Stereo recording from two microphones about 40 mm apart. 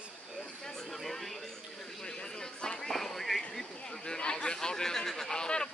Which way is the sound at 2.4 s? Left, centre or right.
Centre.